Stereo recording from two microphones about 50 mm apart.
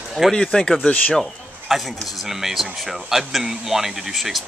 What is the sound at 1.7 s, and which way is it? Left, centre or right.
A man's voice, centre.